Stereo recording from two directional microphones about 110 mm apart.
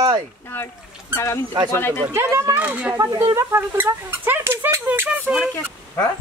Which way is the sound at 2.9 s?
30° right (ahead or behind).